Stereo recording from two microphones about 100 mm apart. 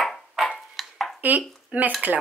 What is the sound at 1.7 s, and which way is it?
Dishes, 15° right (ahead or behind).